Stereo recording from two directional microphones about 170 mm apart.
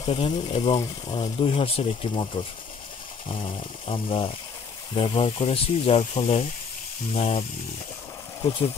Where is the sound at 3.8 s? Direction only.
30° left (ahead or behind).